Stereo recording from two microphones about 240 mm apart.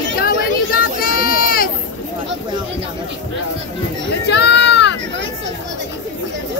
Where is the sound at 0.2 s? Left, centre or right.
Left.